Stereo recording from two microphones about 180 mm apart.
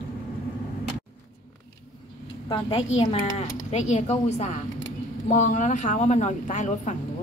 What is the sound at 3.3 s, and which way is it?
Speech, 40° left (ahead or behind).